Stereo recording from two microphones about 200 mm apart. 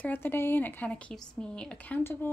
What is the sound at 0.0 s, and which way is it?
A woman's voice, 10° left (ahead or behind).